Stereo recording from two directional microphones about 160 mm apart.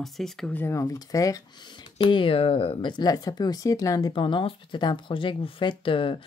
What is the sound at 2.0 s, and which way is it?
Speech, 35° left (ahead or behind).